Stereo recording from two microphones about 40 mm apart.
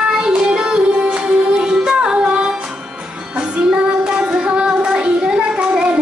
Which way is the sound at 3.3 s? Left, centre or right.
Right.